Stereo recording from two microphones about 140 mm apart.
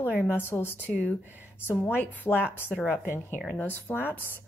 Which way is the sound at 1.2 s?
10° right (ahead or behind).